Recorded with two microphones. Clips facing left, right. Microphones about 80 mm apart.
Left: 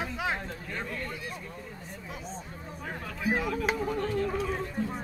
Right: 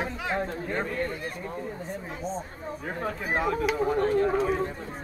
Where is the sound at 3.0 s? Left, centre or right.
Right.